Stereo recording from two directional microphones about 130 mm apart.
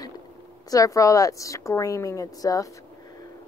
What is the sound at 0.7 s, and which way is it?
A woman's voice, 25° left (ahead or behind).